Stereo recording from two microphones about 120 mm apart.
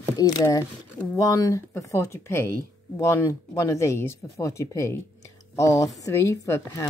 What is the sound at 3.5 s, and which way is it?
A woman's voice, 25° left (ahead or behind).